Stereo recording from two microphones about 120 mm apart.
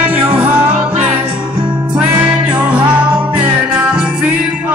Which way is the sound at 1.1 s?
45° right (ahead or behind).